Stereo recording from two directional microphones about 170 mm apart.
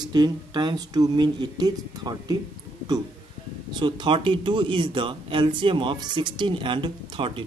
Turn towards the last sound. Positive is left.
turn(degrees=-30)  # may be behind; listen again after turning